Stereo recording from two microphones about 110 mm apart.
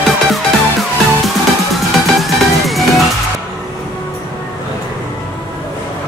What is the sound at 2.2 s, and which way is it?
Music, centre (ahead or behind).